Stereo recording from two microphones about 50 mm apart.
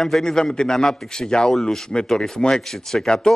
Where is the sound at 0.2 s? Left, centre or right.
Centre.